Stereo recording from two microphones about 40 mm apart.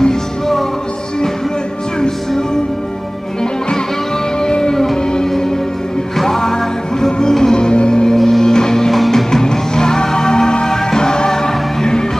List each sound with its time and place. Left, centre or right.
0.0 s music: centre
2.0 s music: centre
4.4 s music: centre
8.9 s music: centre
9.3 s music: centre